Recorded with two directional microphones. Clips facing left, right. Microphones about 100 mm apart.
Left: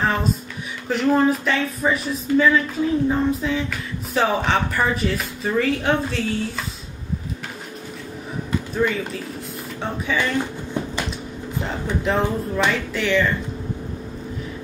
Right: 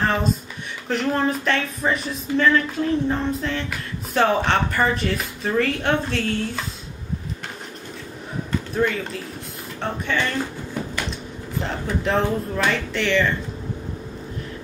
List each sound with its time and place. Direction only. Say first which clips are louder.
0.0 s a sound: even; centre (ahead or behind)
0.8 s speech: left 4 dB; 5° left (ahead or behind)
8.5 s speech: even; centre (ahead or behind)
12.0 s speech: even; 5° left (ahead or behind)